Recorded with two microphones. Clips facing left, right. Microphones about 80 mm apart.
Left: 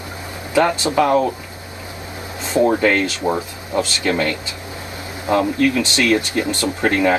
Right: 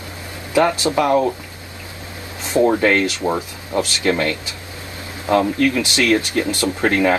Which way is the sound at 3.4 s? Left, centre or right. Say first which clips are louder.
Left 1 dB; left.